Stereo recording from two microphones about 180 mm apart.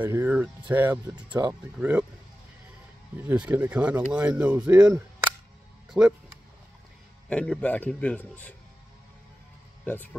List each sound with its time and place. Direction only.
0.0 s speech: 10° right (ahead or behind)
3.2 s speech: 10° right (ahead or behind)
4.7 s speech: 20° right (ahead or behind)
5.9 s speech: 5° right (ahead or behind)
7.2 s a man's voice: 5° left (ahead or behind)